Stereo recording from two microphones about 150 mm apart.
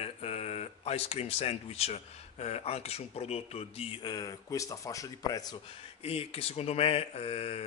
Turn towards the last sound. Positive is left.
turn(degrees=40)  # may be behind; listen again after turning